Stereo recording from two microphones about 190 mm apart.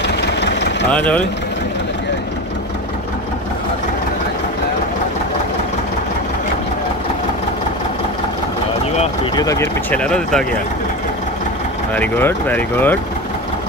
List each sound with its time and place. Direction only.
0.4 s engine: 65° left (ahead or behind)
0.9 s speech: 5° left (ahead or behind)
9.3 s speech: 20° left (ahead or behind)
11.9 s speech: 10° left (ahead or behind)